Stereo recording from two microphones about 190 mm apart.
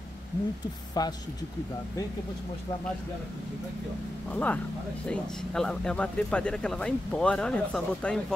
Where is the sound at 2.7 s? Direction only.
25° left (ahead or behind).